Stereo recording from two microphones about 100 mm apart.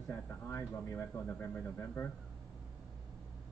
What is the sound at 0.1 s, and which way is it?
Speech, 25° left (ahead or behind).